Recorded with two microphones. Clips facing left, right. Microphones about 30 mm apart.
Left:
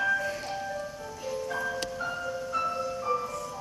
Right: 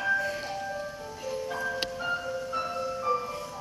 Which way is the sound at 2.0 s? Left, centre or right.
Centre.